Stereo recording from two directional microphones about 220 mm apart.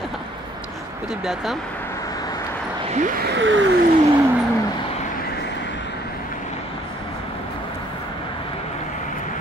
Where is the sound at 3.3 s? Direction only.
55° right (ahead or behind).